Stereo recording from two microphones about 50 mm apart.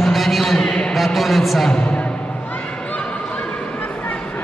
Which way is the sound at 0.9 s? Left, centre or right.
Centre.